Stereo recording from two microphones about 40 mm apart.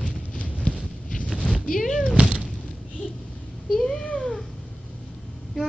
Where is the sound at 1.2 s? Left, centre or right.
Left.